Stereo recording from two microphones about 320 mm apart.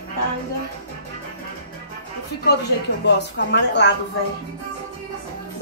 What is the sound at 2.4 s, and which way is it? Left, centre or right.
A woman's voice, left.